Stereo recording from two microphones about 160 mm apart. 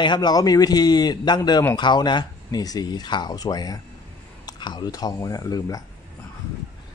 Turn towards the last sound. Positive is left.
turn(degrees=20)  # may be behind; listen again after turning